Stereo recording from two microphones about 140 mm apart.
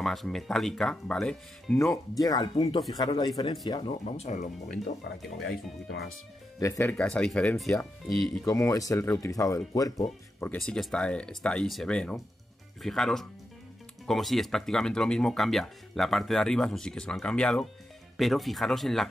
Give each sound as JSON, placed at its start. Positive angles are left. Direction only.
{"t": 0.0, "sound": "speech", "side_deg": 0}
{"t": 2.1, "sound": "speech", "side_deg": 30}
{"t": 4.0, "sound": "speech", "side_deg": 50}
{"t": 6.6, "sound": "speech", "side_deg": 20}
{"t": 8.5, "sound": "speech", "side_deg": 25}
{"t": 10.4, "sound": "speech", "side_deg": 10}